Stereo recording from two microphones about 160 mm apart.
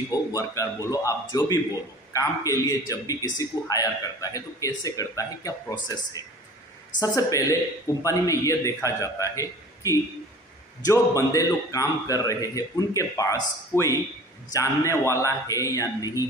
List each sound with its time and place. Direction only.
0.3 s a man's voice: 20° left (ahead or behind)